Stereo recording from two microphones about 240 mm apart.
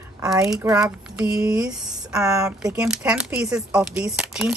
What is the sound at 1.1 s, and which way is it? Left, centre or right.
Speech, centre.